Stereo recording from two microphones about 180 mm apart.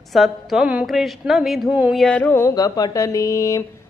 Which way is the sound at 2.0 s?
5° left (ahead or behind).